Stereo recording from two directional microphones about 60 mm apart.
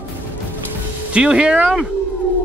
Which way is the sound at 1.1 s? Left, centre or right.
Centre.